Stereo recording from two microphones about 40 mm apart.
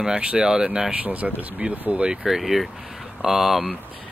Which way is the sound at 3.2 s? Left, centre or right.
Centre.